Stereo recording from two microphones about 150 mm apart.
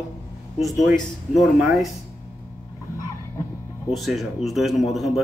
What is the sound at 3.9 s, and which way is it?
A man's voice, centre (ahead or behind).